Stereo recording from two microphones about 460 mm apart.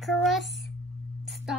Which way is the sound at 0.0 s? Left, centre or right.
Centre.